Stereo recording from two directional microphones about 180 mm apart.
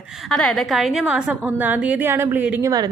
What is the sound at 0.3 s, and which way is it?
A woman's voice, 5° left (ahead or behind).